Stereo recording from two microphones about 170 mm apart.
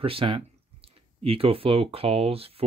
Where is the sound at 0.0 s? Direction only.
30° right (ahead or behind).